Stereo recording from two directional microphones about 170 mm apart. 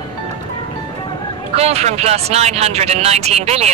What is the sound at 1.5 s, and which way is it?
Speech, 40° right (ahead or behind).